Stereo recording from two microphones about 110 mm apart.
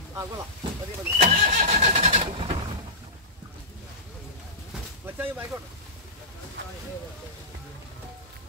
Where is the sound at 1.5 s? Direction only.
85° right.